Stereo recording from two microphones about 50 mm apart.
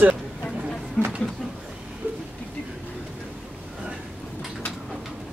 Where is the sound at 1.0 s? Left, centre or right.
Centre.